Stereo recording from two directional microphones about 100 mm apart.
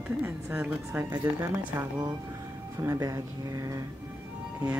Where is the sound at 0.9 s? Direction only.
30° right (ahead or behind).